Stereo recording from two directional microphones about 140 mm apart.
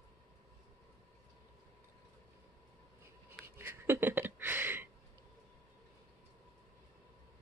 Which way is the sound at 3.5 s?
15° right (ahead or behind).